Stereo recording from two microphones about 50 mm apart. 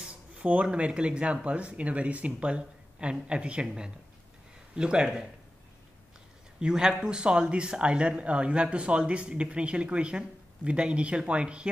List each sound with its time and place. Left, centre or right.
0.1 s speech: right
6.6 s speech: centre